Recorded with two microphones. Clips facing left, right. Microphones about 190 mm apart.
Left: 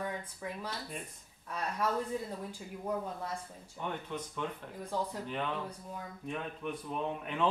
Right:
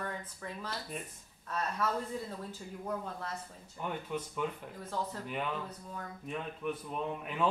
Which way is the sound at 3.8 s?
5° right (ahead or behind).